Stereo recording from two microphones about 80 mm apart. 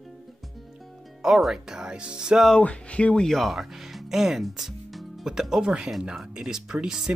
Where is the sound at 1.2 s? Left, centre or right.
Centre.